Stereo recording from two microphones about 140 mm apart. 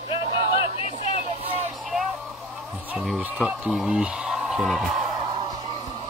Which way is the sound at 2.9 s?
Centre (ahead or behind).